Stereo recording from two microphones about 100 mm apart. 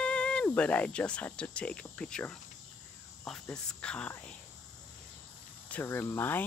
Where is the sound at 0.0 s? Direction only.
10° left (ahead or behind).